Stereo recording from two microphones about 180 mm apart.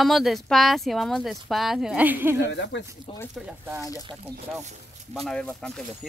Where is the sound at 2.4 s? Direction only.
75° left (ahead or behind).